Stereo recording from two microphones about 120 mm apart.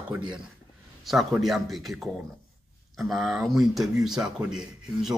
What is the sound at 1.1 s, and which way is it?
A man's voice, centre (ahead or behind).